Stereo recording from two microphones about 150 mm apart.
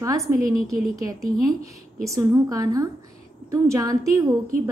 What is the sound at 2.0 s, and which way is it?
A woman's voice, 20° right (ahead or behind).